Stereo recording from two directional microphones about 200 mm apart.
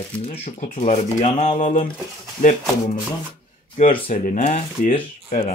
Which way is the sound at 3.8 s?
40° left (ahead or behind).